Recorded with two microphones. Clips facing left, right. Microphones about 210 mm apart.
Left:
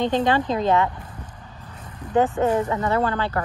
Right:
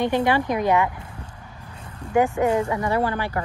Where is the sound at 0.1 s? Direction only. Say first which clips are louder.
Even; 10° right (ahead or behind).